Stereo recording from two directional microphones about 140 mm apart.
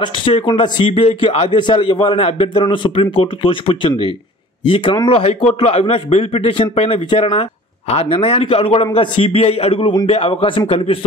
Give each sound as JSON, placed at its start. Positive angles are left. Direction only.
{"t": 0.2, "sound": "a man's voice", "side_deg": 40}